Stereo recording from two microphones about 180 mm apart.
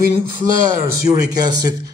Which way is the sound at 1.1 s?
20° right (ahead or behind).